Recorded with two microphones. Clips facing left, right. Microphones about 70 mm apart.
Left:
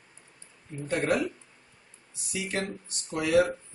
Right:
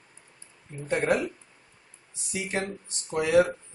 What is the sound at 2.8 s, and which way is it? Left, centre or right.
Speech, right.